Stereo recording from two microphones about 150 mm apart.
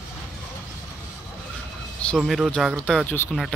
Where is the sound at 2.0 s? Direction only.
Centre (ahead or behind).